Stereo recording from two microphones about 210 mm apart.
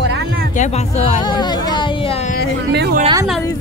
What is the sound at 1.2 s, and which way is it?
Speech, 20° left (ahead or behind).